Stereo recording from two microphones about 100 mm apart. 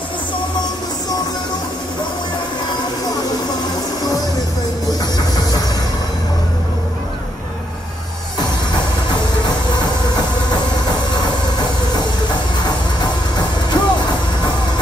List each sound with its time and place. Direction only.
13.7 s music: 45° left (ahead or behind)